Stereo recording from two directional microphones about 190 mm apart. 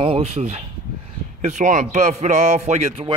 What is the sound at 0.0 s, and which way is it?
A man's voice, 30° right (ahead or behind).